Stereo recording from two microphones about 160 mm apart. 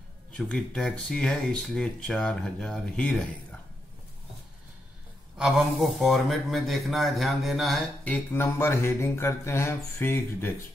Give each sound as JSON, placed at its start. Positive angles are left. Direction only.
{"t": 0.3, "sound": "speech", "side_deg": 5}
{"t": 5.4, "sound": "speech", "side_deg": 0}
{"t": 8.3, "sound": "mantra", "side_deg": 15}